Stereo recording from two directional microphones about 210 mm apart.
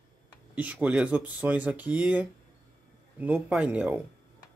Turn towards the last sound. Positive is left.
turn(degrees=-5)  # may be behind; listen again after turning